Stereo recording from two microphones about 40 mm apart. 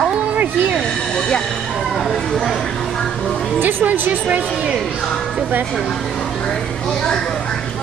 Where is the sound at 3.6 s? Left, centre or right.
Right.